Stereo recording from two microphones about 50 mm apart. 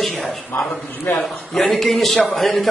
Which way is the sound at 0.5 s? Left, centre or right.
Left.